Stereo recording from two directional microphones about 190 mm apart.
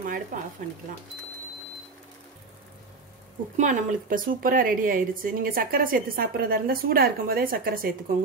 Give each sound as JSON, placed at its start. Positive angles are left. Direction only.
{"t": 0.0, "sound": "a woman's voice", "side_deg": -45}
{"t": 3.5, "sound": "a woman's voice", "side_deg": -40}